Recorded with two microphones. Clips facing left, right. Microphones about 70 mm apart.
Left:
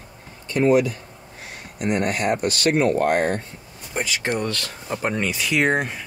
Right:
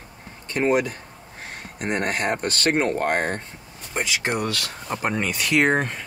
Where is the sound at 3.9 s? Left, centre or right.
Centre.